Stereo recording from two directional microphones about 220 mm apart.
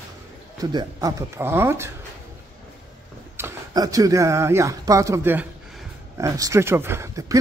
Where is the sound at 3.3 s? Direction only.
15° right (ahead or behind).